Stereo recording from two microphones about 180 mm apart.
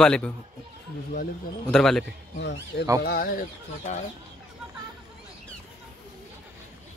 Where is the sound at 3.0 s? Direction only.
60° left (ahead or behind).